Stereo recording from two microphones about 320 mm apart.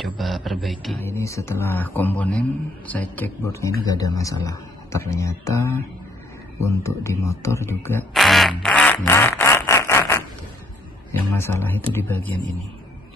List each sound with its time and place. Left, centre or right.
0.0 s speech: centre
8.6 s a sound: centre
11.3 s speech: centre